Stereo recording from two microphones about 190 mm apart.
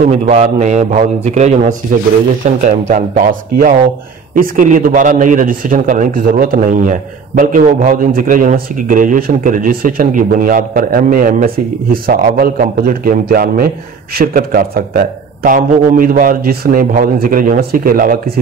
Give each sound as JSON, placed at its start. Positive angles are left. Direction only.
{"t": 0.0, "sound": "a man's voice", "side_deg": -40}